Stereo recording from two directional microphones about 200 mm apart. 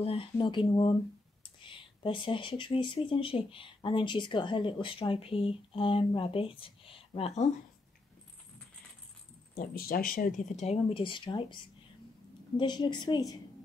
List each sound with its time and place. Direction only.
0.0 s speech: 25° left (ahead or behind)
1.6 s speech: 25° left (ahead or behind)
9.6 s speech: 45° left (ahead or behind); by 11.5 s 25° left (ahead or behind)
12.5 s speech: 20° left (ahead or behind)